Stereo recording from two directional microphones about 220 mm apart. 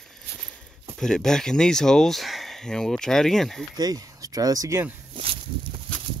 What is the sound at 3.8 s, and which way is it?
Speech, 15° right (ahead or behind).